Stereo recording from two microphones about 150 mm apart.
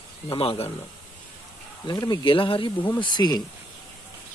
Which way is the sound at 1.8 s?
30° left (ahead or behind).